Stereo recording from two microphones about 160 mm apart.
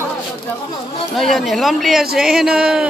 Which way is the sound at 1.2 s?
Centre (ahead or behind).